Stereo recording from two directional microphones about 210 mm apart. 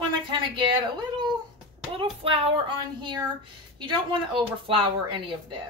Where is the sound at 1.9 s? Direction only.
25° right (ahead or behind).